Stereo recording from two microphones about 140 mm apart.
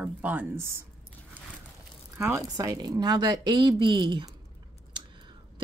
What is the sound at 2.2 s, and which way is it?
A woman's voice, 20° right (ahead or behind).